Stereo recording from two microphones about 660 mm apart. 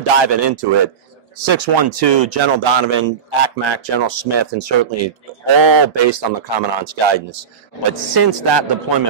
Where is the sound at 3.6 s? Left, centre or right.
Right.